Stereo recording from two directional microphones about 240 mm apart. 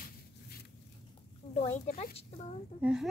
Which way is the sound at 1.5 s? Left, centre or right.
Left.